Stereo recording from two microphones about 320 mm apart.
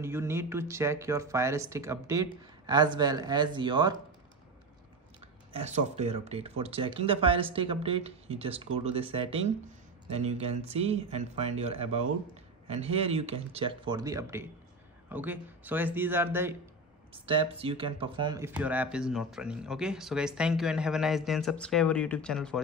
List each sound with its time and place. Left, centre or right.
0.0 s speech: centre
5.5 s speech: right; by 22.6 s centre